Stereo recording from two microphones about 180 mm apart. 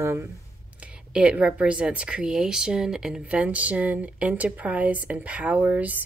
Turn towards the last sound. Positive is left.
turn(degrees=-10)  # may be behind; listen again after turning